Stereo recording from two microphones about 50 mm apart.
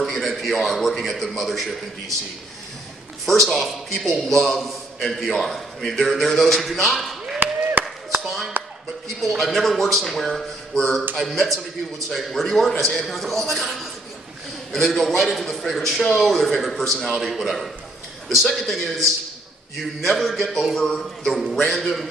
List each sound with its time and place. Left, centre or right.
0.0 s a man's voice: centre
3.3 s a man's voice: centre
7.3 s chop: right
8.2 s a sound: centre
9.4 s a man's voice: centre